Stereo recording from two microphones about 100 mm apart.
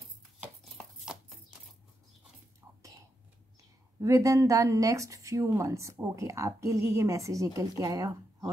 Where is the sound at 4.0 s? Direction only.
35° right (ahead or behind).